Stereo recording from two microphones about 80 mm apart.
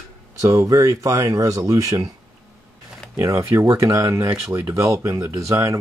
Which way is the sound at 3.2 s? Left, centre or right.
Right.